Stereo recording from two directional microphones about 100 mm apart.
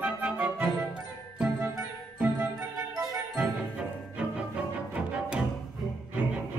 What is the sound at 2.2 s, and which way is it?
Music, 15° right (ahead or behind).